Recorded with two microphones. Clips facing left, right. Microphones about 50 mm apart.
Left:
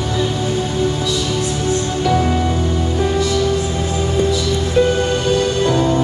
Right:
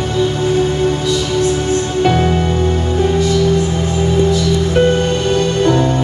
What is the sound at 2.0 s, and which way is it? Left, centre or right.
Music, right.